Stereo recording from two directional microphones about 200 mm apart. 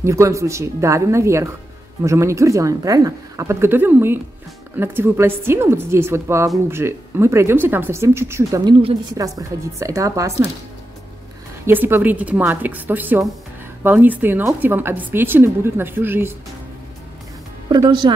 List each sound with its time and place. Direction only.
0.0 s a woman's voice: 15° right (ahead or behind)
11.6 s a woman's voice: 10° right (ahead or behind)
17.6 s speech: 20° right (ahead or behind)